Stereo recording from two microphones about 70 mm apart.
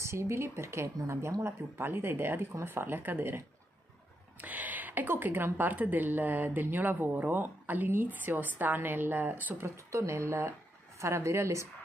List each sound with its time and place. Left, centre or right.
0.0 s speech: right
9.8 s speech: right